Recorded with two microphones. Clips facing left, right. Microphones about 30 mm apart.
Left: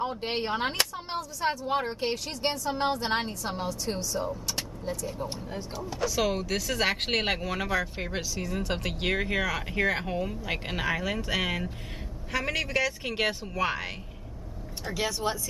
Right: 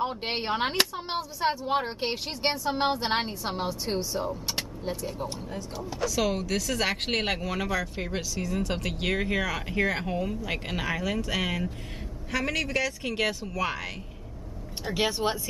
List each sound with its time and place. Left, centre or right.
0.0 s speech: right
5.9 s speech: centre
15.0 s speech: right